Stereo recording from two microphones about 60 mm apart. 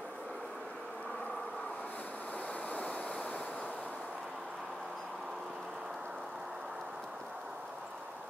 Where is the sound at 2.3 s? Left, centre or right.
Left.